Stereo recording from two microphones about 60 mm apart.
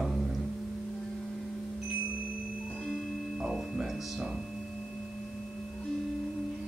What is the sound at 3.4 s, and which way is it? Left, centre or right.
Music, centre.